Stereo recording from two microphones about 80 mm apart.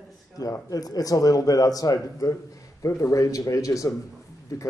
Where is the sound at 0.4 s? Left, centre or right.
Left.